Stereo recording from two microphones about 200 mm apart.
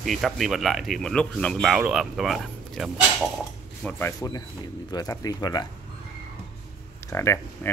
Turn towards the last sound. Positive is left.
turn(degrees=15)  # may be behind; listen again after turning